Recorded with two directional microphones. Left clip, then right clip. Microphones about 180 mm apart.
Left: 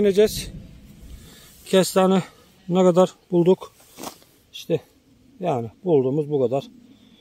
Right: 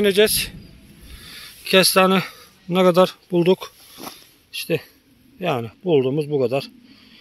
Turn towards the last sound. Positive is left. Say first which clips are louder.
# right 1 dB
turn(degrees=0)  # may be behind; listen again after turning